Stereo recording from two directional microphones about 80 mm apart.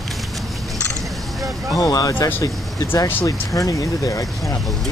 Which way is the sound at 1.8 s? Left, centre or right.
Left.